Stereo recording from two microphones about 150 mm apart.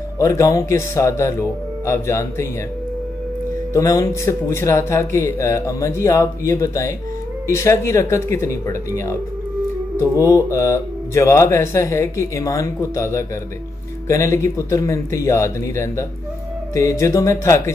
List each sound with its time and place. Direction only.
0.2 s speech: 20° left (ahead or behind)
3.7 s speech: 25° left (ahead or behind)
10.3 s speech: 20° left (ahead or behind)